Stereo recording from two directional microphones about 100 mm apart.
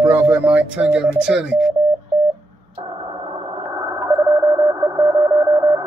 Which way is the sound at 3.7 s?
35° right (ahead or behind).